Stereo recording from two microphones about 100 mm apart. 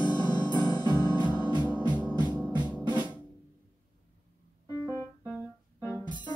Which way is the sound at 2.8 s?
45° right (ahead or behind).